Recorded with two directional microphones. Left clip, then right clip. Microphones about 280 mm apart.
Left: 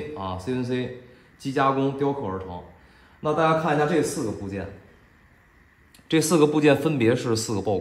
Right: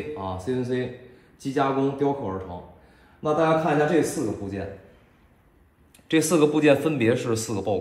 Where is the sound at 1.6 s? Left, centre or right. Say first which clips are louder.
Left 2 dB; centre.